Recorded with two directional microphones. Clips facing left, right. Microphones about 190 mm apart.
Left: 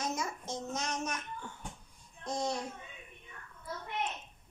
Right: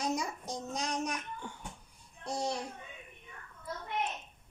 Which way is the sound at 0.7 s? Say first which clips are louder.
Right 4 dB; 15° right (ahead or behind).